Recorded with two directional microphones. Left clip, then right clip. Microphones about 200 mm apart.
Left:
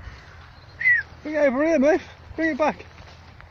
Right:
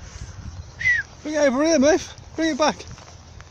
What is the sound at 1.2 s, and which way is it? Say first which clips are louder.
Speech: right 2 dB; 10° right (ahead or behind).